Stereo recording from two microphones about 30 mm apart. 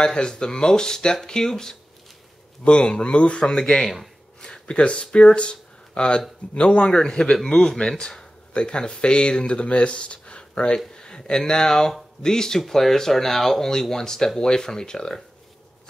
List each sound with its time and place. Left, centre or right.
0.0 s speech: left
2.6 s speech: left
3.5 s speech: left
3.8 s speech: centre
4.4 s a sound: left
5.1 s speech: left
7.5 s speech: centre
8.5 s speech: left
12.5 s speech: centre